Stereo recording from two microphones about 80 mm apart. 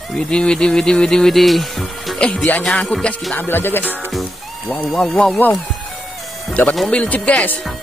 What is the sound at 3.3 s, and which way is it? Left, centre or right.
Music, left.